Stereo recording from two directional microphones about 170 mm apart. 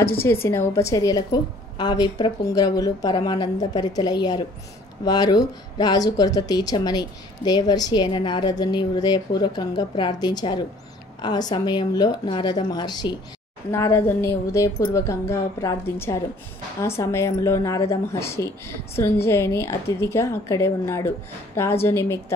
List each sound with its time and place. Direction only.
0.0 s a woman's voice: 15° left (ahead or behind)